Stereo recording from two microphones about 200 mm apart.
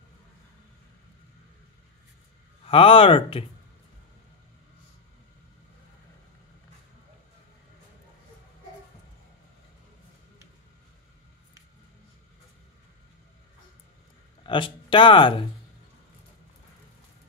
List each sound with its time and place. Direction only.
2.6 s speech: 25° left (ahead or behind)
14.4 s speech: 25° left (ahead or behind)